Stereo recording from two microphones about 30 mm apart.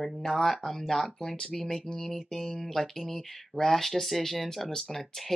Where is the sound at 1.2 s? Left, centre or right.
Centre.